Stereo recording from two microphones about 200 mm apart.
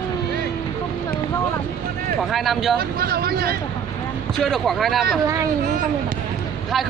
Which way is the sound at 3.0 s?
50° right (ahead or behind).